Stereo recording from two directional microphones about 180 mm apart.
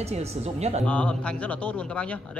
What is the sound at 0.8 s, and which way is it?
Speech, 5° left (ahead or behind).